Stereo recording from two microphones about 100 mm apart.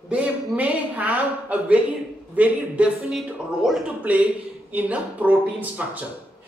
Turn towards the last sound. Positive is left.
turn(degrees=-10)  # may be behind; listen again after turning